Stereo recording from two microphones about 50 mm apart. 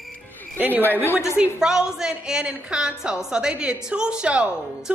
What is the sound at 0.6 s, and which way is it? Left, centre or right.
Speech, right.